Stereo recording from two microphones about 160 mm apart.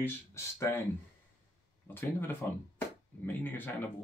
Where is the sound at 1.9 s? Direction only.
15° left (ahead or behind).